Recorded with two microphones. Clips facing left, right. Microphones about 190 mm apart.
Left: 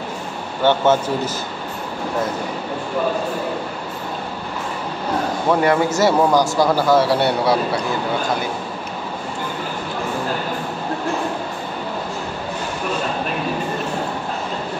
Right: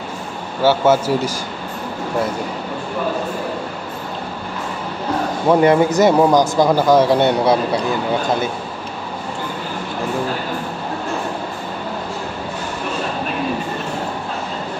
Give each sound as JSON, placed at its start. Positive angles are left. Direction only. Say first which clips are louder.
{"t": 0.7, "sound": "speech", "louder": "right 2 dB", "side_deg": -10}
{"t": 5.5, "sound": "a man's voice", "louder": "right 4 dB", "side_deg": -20}